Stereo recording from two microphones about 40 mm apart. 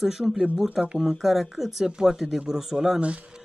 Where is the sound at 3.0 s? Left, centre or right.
Right.